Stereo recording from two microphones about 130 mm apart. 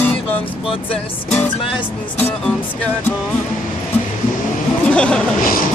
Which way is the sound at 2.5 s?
10° left (ahead or behind).